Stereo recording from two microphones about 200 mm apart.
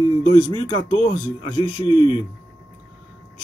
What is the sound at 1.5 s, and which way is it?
Speech, 25° left (ahead or behind).